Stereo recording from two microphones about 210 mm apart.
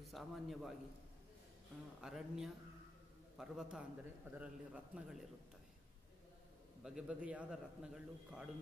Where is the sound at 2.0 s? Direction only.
5° right (ahead or behind).